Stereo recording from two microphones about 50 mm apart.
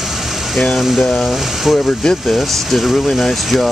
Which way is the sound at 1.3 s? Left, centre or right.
Centre.